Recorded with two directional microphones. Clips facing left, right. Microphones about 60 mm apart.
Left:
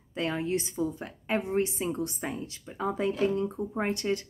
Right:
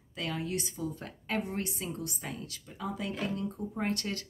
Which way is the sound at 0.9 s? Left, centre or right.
Centre.